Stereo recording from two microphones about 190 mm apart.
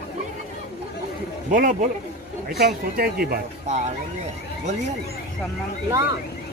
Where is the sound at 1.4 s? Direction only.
45° right (ahead or behind).